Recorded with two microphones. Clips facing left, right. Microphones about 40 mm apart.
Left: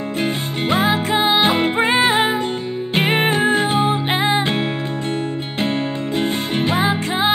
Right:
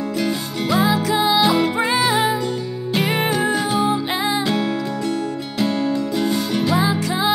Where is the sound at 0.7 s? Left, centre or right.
Left.